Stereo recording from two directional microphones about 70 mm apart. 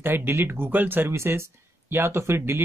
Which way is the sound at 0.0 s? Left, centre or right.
Right.